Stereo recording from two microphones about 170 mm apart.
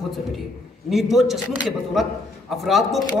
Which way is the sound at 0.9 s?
Centre (ahead or behind).